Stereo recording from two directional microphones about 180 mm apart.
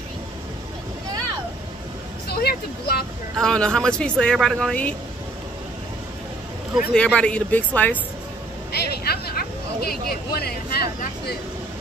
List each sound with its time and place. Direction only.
2.2 s vehicle: 60° left (ahead or behind)
3.3 s speech: 5° left (ahead or behind)
6.7 s speech: 5° left (ahead or behind)
8.7 s a sound: 60° left (ahead or behind)